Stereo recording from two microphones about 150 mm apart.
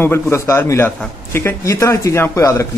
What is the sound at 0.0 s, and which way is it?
Speech, 15° left (ahead or behind).